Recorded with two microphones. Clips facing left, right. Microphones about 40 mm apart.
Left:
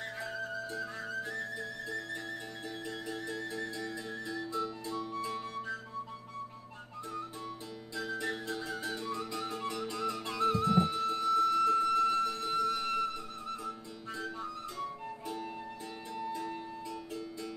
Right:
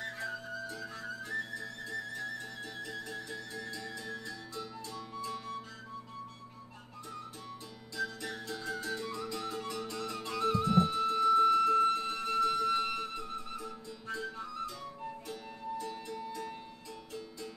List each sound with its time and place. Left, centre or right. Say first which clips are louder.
1.9 s music: right 3 dB; centre
7.9 s music: left 2 dB; centre
8.7 s flute: left 1 dB; centre
11.1 s music: right 3 dB; centre
11.8 s music: left 2 dB; right
15.8 s music: even; left